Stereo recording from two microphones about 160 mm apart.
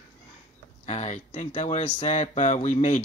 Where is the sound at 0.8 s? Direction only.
45° left (ahead or behind).